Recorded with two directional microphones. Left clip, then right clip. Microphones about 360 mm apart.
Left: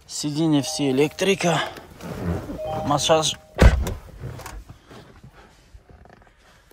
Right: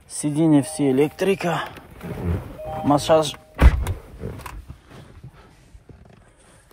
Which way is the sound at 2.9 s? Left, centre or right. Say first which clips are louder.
Right 2 dB; centre.